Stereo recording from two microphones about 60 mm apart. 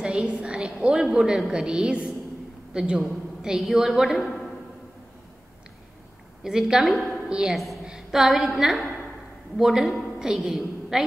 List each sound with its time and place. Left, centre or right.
0.0 s a sound: centre
0.3 s a woman's voice: centre
6.4 s a woman's voice: centre
7.2 s a woman's voice: centre
7.5 s a woman's voice: centre